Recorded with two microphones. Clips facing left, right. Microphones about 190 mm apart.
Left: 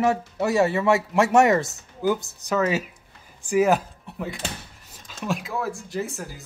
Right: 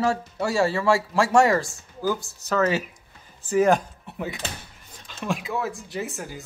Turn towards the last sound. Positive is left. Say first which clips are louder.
# left 1 dB
turn(degrees=0)  # may be behind; listen again after turning